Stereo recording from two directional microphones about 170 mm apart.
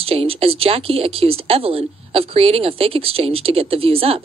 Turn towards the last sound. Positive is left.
turn(degrees=-35)  # may be behind; listen again after turning